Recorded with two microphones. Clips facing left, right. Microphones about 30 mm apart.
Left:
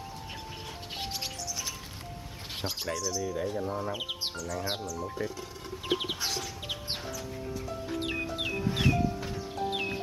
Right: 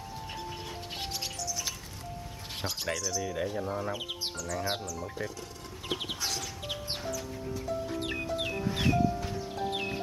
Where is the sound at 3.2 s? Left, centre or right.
Right.